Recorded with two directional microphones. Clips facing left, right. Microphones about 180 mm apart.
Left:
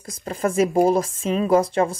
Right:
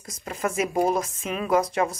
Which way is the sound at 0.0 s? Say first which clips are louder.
Left 5 dB; 35° left (ahead or behind).